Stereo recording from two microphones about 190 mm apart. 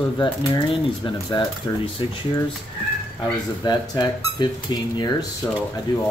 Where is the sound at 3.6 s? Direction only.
20° left (ahead or behind).